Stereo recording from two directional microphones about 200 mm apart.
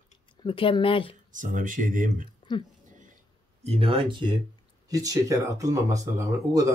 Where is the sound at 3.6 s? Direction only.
30° right (ahead or behind).